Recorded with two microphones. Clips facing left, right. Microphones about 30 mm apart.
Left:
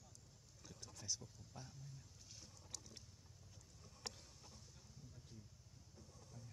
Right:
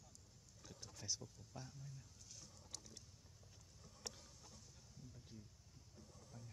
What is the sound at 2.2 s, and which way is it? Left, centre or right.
Boat, left.